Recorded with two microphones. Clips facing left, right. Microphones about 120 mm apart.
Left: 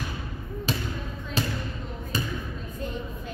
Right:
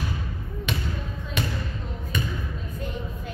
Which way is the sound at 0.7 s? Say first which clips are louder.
Left 1 dB; 35° left (ahead or behind).